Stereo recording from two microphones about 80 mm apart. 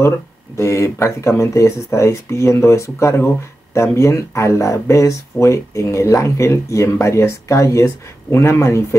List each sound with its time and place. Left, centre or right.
0.6 s speech: left